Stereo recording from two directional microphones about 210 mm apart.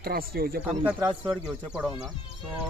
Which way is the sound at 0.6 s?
5° right (ahead or behind).